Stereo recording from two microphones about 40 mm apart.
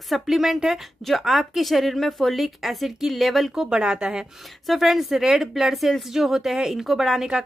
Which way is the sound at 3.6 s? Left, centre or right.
Centre.